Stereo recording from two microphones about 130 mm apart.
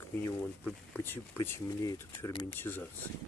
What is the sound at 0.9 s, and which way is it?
Speech, 15° left (ahead or behind).